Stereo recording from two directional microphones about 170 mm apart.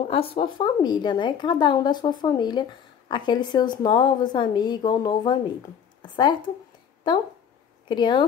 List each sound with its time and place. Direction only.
0.1 s a woman's voice: 35° left (ahead or behind)
7.0 s a woman's voice: 25° left (ahead or behind)